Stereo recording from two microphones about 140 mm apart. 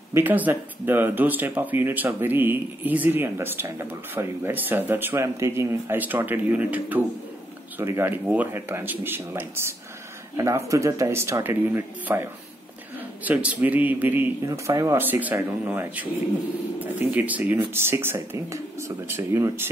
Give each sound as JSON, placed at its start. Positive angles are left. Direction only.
{"t": 0.1, "sound": "speech", "side_deg": -15}